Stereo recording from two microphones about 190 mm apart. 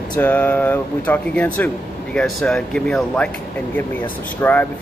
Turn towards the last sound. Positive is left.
turn(degrees=10)  # may be behind; listen again after turning